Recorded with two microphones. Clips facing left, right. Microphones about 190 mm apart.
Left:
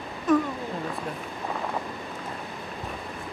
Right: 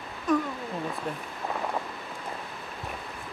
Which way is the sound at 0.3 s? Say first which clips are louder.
Left 4 dB; centre (ahead or behind).